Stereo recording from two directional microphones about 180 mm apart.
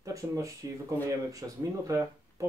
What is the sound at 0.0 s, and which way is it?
Speech, 20° right (ahead or behind).